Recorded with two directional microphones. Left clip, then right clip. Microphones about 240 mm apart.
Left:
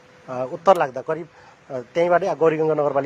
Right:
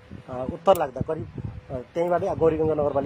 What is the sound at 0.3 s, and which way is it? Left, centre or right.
Speech, left.